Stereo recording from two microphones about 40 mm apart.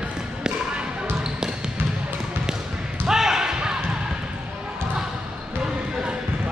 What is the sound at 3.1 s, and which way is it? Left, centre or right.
Basketball bounce, centre.